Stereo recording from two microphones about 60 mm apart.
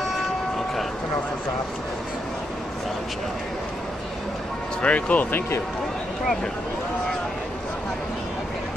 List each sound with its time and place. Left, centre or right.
4.8 s speech: left